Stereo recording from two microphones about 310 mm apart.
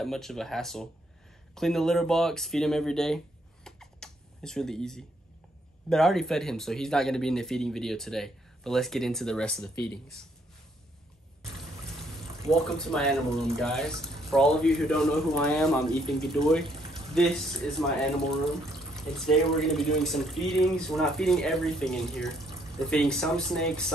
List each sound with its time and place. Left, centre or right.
0.0 s speech: centre
3.6 s computer keyboard: centre
5.9 s speech: centre
12.0 s speech: centre